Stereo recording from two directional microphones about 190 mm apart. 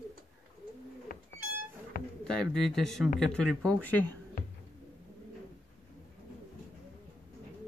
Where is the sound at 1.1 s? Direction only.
45° left (ahead or behind).